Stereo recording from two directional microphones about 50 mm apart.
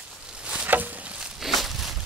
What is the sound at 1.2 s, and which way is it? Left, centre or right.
Walk, centre.